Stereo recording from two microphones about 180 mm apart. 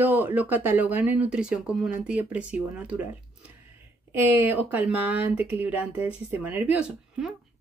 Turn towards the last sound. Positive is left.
turn(degrees=-5)  # may be behind; listen again after turning